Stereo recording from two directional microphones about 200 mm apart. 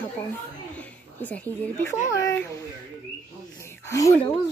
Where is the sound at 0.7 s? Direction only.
5° left (ahead or behind).